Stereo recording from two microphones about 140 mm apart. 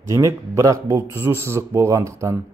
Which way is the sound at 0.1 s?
20° right (ahead or behind).